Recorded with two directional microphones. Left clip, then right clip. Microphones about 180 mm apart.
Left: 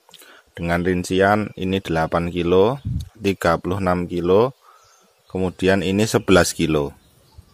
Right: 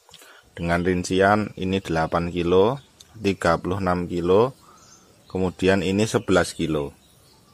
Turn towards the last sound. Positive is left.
turn(degrees=20)  # may be behind; listen again after turning